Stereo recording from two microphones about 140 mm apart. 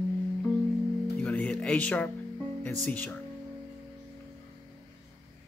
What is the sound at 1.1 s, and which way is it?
Music, 10° left (ahead or behind).